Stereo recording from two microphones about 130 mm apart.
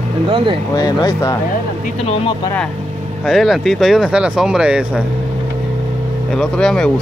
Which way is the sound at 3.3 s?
Centre (ahead or behind).